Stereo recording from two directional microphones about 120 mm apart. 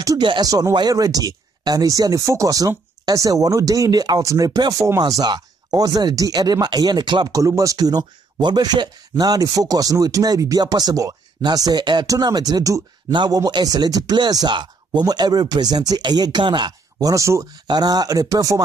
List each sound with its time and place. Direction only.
0.2 s speech: 40° right (ahead or behind)
0.5 s speech: 30° right (ahead or behind)